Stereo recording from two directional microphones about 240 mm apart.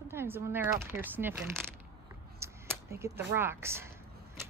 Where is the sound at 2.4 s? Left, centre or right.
Centre.